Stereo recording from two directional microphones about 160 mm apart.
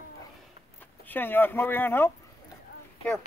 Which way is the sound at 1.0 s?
10° left (ahead or behind).